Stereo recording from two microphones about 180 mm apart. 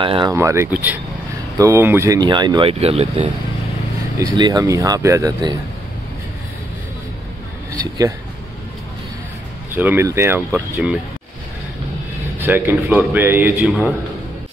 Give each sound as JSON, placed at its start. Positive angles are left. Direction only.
{"t": 0.0, "sound": "speech", "side_deg": -30}
{"t": 0.3, "sound": "a man's voice", "side_deg": -15}
{"t": 4.2, "sound": "speech", "side_deg": -20}
{"t": 9.8, "sound": "a man's voice", "side_deg": -10}
{"t": 12.4, "sound": "a man's voice", "side_deg": -10}